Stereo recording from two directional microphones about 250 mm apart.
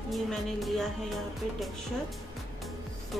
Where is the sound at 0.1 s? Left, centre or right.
Centre.